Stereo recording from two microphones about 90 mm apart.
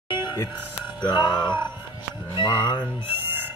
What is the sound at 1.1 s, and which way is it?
Music, 55° left (ahead or behind).